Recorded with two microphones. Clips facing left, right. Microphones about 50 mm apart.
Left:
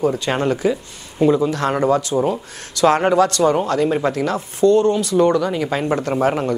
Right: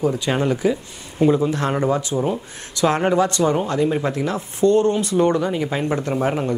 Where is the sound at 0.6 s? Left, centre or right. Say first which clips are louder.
Left 1 dB; centre.